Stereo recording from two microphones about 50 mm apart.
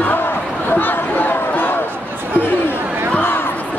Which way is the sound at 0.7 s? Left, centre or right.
Left.